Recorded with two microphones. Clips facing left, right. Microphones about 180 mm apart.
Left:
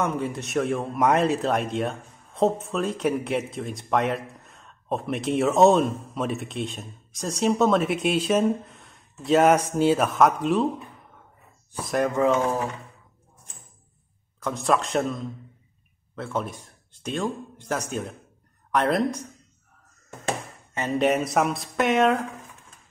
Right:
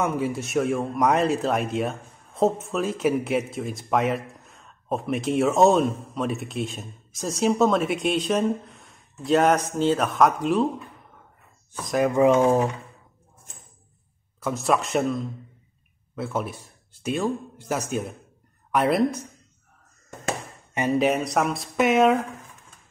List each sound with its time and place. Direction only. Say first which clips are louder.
0.0 s speech: right 2 dB; 5° right (ahead or behind)
12.1 s speech: right 5 dB; 15° right (ahead or behind)
14.4 s speech: even; 5° right (ahead or behind)
21.0 s speech: left 4 dB; centre (ahead or behind)